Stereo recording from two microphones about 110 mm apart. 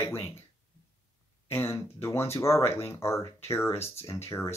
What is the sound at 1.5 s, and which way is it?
Speech, 20° left (ahead or behind).